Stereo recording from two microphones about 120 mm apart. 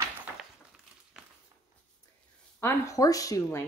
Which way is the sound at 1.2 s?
5° right (ahead or behind).